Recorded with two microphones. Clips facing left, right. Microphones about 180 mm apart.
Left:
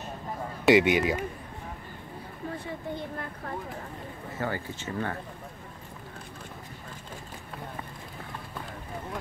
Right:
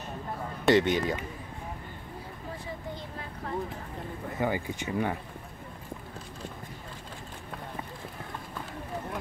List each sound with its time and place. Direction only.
0.7 s speech: 10° left (ahead or behind)
2.6 s a sound: 55° left (ahead or behind)
4.4 s speech: 15° right (ahead or behind)